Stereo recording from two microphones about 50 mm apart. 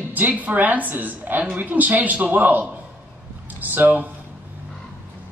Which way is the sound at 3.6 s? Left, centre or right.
Right.